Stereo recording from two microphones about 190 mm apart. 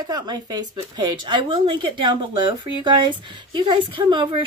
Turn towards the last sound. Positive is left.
turn(degrees=-25)  # may be behind; listen again after turning